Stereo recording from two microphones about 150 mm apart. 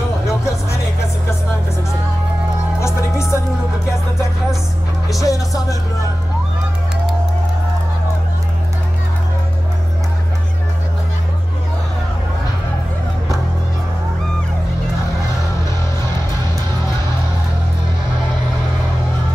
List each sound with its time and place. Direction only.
2.8 s music: 20° left (ahead or behind)
5.2 s music: 20° left (ahead or behind)